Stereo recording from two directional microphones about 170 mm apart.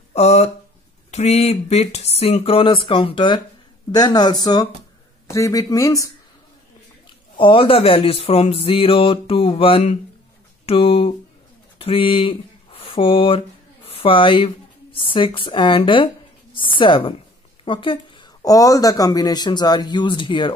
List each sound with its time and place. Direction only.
0.1 s speech: 40° left (ahead or behind); by 6.0 s 20° left (ahead or behind)
7.3 s speech: 30° left (ahead or behind)